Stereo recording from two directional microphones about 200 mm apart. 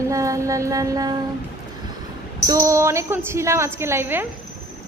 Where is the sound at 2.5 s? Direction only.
15° right (ahead or behind).